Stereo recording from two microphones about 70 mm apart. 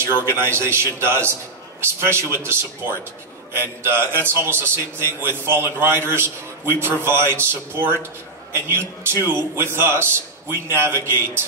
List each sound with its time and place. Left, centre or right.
0.0 s a man's voice: right